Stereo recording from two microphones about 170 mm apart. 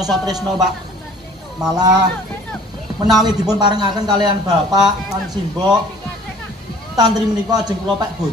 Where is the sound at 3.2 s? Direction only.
25° right (ahead or behind).